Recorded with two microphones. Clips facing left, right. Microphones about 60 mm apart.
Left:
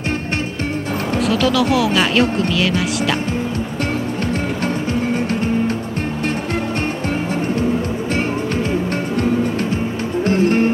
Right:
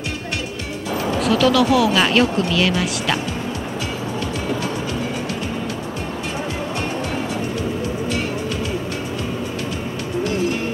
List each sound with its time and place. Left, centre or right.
1.2 s speech: centre
4.6 s music: left
10.2 s music: left